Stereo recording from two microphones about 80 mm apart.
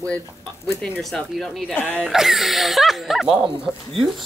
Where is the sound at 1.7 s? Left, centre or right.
Centre.